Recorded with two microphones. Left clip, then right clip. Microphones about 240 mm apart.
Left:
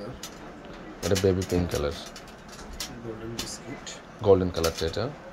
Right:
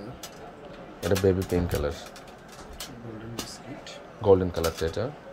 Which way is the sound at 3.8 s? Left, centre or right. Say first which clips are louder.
Even; centre.